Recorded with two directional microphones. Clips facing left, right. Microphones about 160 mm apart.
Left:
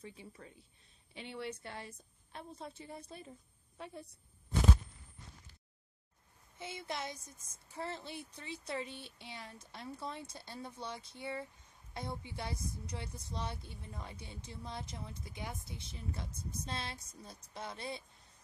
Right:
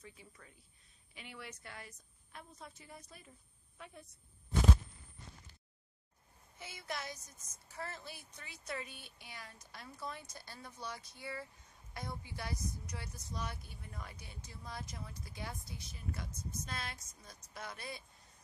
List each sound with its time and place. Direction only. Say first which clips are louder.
0.0 s a woman's voice: left 6 dB; 30° left (ahead or behind)
6.6 s a woman's voice: left 3 dB; 25° left (ahead or behind)